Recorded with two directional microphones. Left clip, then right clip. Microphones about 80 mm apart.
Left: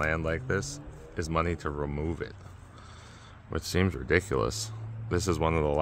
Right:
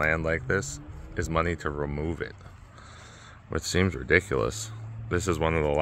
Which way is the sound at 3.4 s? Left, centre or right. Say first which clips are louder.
Right 3 dB; right.